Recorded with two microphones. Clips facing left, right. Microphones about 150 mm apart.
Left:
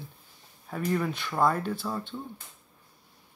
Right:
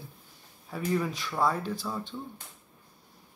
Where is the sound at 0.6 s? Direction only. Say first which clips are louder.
Left 1 dB; 5° right (ahead or behind).